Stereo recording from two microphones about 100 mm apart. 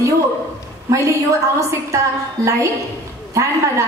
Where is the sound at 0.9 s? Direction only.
30° right (ahead or behind).